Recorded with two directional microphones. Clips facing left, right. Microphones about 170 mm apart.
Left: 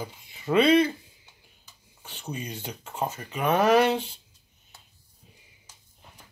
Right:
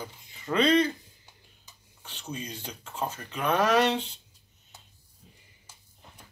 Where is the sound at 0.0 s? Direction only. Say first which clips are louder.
Left 5 dB; 15° left (ahead or behind).